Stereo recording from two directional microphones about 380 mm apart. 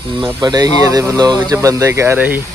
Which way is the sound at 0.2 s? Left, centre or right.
Centre.